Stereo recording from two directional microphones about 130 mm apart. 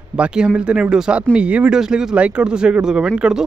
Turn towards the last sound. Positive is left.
turn(degrees=-5)  # may be behind; listen again after turning